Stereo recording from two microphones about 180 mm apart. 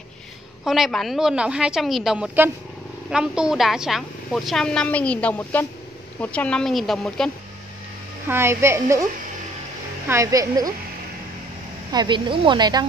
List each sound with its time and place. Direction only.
0.7 s a woman's voice: centre (ahead or behind)
8.3 s a woman's voice: 15° right (ahead or behind)
10.0 s a woman's voice: 15° right (ahead or behind)
11.9 s a woman's voice: 25° right (ahead or behind)